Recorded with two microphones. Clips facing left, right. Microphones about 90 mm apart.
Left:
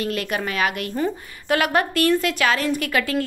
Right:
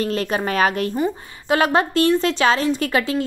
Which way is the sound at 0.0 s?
30° right (ahead or behind).